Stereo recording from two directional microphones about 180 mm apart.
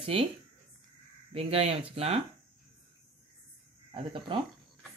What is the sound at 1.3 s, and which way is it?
Speech, 35° right (ahead or behind).